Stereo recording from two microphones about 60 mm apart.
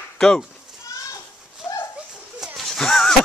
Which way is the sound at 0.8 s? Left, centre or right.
Left.